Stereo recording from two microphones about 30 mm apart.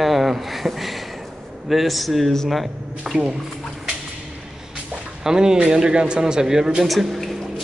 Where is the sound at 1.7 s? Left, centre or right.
Centre.